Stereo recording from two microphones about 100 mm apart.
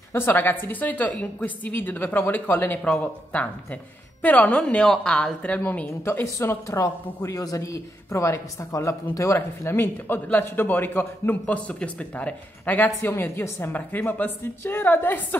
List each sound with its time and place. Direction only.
0.1 s a man's voice: 20° left (ahead or behind)
6.2 s a man's voice: 30° left (ahead or behind)